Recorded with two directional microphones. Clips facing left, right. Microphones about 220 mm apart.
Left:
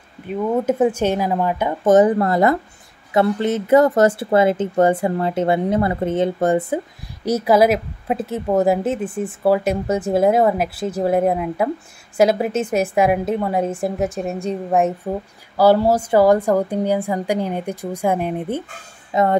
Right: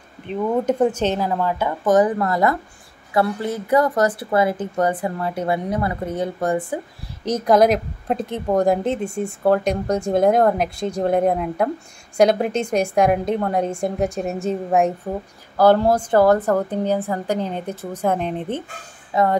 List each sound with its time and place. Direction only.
0.3 s a woman's voice: 5° left (ahead or behind); by 6.8 s 25° left (ahead or behind)
7.2 s a woman's voice: 5° left (ahead or behind)